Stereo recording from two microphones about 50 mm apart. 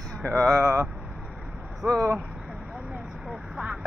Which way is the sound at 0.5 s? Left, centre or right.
Centre.